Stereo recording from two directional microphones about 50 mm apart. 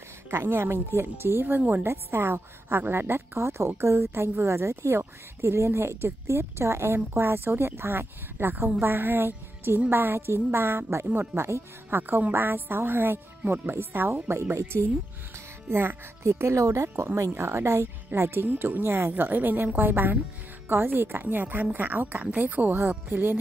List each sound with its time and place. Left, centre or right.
0.3 s a woman's voice: right
11.9 s a woman's voice: right
16.3 s speech: right
17.0 s a woman's voice: right